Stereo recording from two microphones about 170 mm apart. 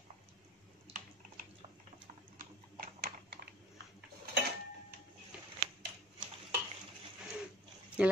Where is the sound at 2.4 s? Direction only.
60° right (ahead or behind).